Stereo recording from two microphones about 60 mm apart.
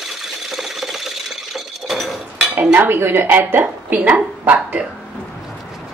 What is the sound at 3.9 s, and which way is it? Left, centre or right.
Speech, right.